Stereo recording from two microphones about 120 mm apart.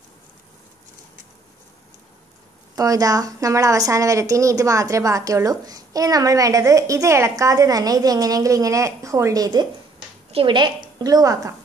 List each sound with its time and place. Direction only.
2.7 s a woman's voice: 30° right (ahead or behind)